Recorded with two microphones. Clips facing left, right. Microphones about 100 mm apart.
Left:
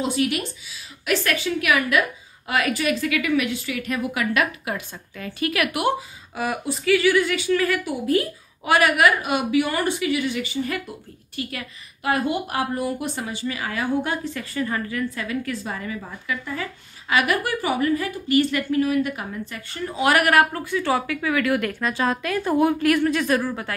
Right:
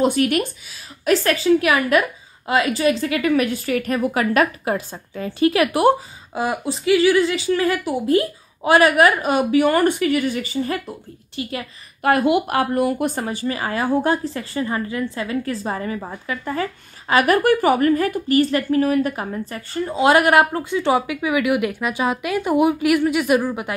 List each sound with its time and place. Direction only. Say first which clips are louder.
0.0 s speech: right 6 dB; 55° right (ahead or behind)
1.0 s a woman's voice: right 6 dB; 35° right (ahead or behind)
11.4 s a woman's voice: right 2 dB; 25° right (ahead or behind)
12.0 s a woman's voice: right 6 dB; 65° right (ahead or behind); by 23.7 s 15° right (ahead or behind)